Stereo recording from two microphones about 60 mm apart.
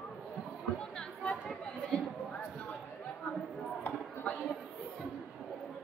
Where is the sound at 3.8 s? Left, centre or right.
Left.